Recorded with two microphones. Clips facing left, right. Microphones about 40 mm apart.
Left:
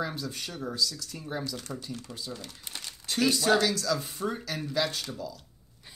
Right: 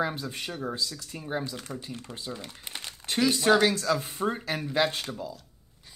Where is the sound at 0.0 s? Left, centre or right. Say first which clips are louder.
Right 3 dB; right.